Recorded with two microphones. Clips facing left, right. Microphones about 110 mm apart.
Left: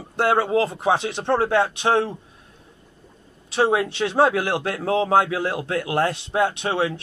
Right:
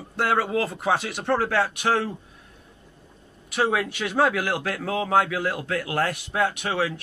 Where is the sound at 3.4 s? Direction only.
30° left (ahead or behind).